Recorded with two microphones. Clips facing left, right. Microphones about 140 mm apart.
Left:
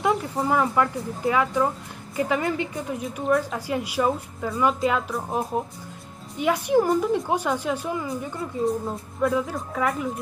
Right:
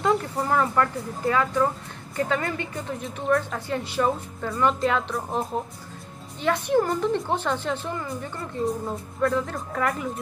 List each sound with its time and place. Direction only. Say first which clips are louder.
0.0 s a woman's voice: even; 5° left (ahead or behind)